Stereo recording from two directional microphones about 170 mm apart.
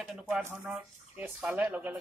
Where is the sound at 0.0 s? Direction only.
5° right (ahead or behind).